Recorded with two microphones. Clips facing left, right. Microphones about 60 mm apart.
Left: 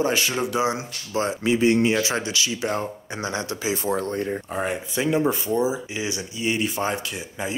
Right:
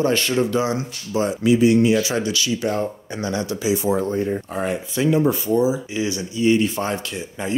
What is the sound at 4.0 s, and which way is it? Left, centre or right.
Speech, left.